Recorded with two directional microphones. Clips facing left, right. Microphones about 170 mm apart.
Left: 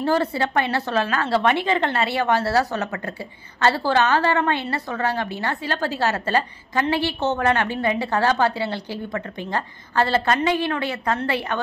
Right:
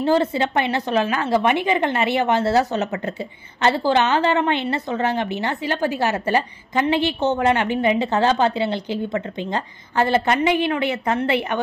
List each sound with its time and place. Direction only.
0.0 s a woman's voice: 20° right (ahead or behind)